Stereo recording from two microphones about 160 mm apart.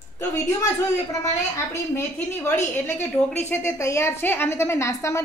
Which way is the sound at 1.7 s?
15° left (ahead or behind).